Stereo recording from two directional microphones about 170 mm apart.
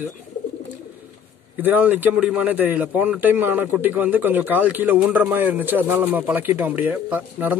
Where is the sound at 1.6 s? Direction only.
10° right (ahead or behind).